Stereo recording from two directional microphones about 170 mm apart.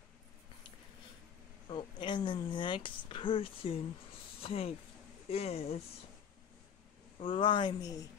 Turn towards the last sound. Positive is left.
turn(degrees=25)  # may be behind; listen again after turning